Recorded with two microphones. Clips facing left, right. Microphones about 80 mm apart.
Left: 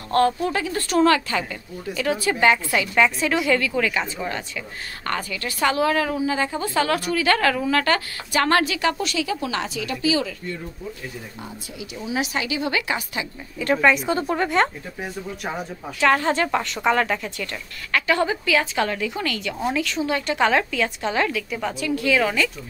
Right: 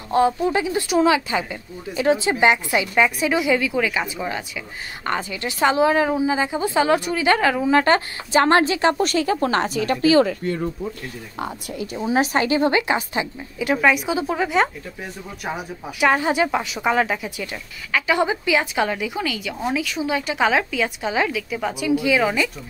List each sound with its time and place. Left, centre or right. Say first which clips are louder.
0.1 s a woman's voice: right 2 dB; centre; by 10.3 s right
11.8 s a woman's voice: right 6 dB; right
12.7 s a woman's voice: right 5 dB; right
13.6 s a woman's voice: even; centre